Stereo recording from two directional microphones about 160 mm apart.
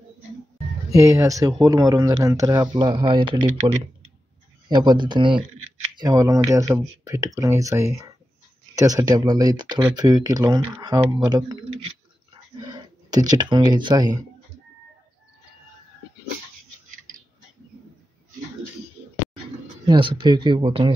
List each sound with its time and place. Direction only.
0.8 s speech: 20° right (ahead or behind)
13.1 s speech: 25° right (ahead or behind)
19.9 s speech: 30° right (ahead or behind)